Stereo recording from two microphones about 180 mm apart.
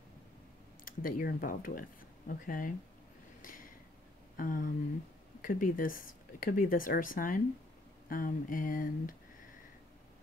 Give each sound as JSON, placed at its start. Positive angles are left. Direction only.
{"t": 0.8, "sound": "speech", "side_deg": 50}
{"t": 3.4, "sound": "a sound", "side_deg": 50}
{"t": 4.4, "sound": "speech", "side_deg": 50}